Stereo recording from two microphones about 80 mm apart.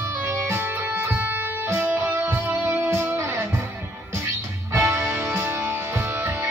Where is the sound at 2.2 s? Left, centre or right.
Right.